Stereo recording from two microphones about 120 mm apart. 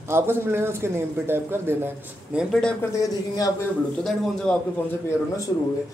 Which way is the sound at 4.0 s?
5° left (ahead or behind).